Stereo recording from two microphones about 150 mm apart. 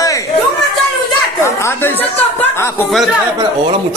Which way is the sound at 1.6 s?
15° left (ahead or behind).